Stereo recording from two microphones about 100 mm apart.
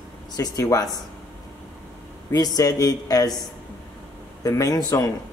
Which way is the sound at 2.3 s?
40° left (ahead or behind).